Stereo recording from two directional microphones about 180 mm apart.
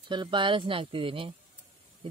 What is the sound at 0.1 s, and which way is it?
Speech, 25° right (ahead or behind).